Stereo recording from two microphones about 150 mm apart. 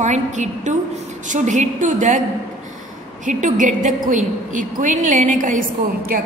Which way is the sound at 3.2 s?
55° right (ahead or behind).